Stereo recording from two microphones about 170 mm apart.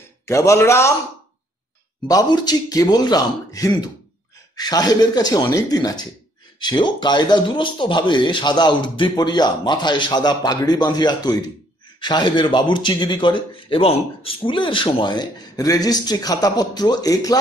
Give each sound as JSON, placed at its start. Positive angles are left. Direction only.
{"t": 0.2, "sound": "a man's voice", "side_deg": 15}
{"t": 2.0, "sound": "speech", "side_deg": 25}